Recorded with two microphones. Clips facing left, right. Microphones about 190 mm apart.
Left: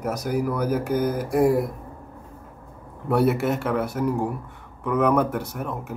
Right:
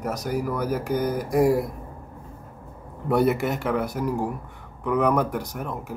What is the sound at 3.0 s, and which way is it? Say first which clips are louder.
Speech: left 1 dB; 5° left (ahead or behind).